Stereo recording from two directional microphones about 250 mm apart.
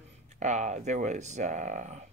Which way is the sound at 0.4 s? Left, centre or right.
Right.